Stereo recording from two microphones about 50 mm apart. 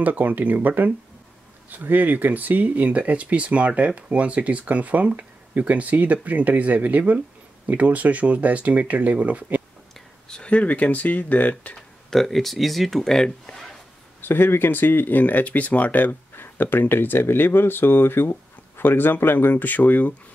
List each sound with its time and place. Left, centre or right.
0.0 s speech: right
10.2 s speech: centre
11.7 s speech: centre
14.2 s speech: left